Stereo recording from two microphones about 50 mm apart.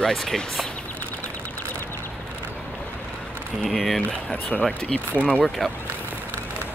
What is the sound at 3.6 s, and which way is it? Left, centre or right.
Speech, centre.